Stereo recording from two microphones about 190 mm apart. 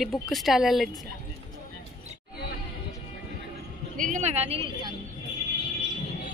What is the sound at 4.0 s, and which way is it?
Speech, 40° right (ahead or behind).